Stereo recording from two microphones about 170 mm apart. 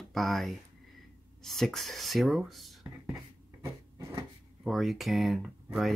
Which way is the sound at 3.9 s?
20° right (ahead or behind).